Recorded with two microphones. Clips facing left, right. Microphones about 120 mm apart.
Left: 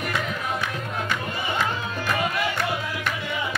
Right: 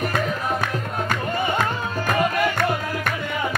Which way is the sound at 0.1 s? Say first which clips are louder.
Right 4 dB; 45° right (ahead or behind).